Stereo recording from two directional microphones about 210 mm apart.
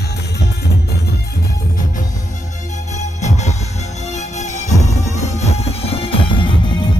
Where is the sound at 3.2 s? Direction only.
35° left (ahead or behind).